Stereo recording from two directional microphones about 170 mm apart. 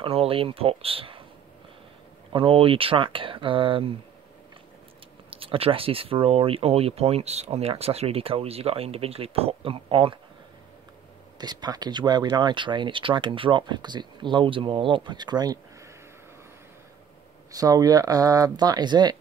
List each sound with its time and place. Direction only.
0.0 s speech: 35° right (ahead or behind)
2.3 s speech: 30° right (ahead or behind)
5.3 s speech: 30° right (ahead or behind)
11.3 s speech: 25° right (ahead or behind)
17.5 s speech: 20° right (ahead or behind)